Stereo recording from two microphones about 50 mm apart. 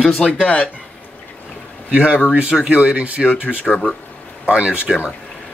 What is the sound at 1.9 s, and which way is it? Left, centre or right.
Speech, right.